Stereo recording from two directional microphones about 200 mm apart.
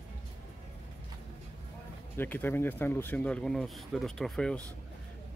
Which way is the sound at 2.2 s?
10° left (ahead or behind).